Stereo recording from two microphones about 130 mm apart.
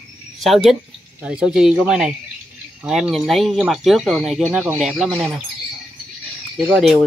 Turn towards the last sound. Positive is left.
turn(degrees=0)  # may be behind; listen again after turning